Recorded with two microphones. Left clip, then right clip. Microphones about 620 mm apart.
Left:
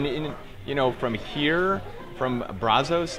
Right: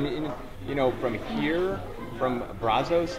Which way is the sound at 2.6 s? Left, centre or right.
Left.